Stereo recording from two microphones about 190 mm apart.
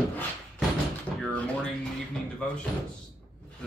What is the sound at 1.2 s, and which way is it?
Drawer open or close, 5° left (ahead or behind).